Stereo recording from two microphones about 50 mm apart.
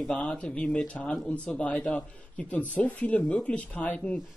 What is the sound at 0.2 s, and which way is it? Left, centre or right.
Speech, left.